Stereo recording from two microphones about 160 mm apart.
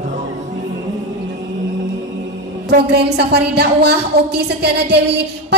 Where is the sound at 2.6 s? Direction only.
90° right.